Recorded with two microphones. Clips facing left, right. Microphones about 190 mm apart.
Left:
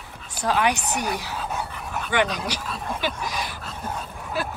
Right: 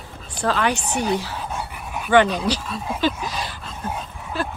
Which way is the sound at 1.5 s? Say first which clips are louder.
Even; 10° right (ahead or behind).